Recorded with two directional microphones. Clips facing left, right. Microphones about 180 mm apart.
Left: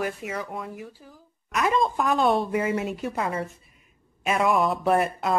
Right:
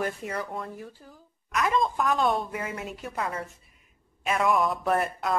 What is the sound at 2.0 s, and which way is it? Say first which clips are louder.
Speech: left 3 dB; 25° left (ahead or behind).